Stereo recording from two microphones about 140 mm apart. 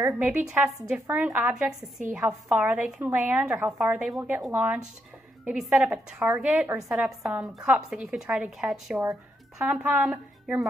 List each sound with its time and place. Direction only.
0.0 s a woman's voice: 15° right (ahead or behind)